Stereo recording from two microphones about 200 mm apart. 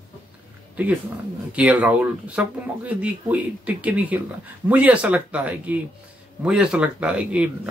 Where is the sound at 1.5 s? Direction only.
5° right (ahead or behind).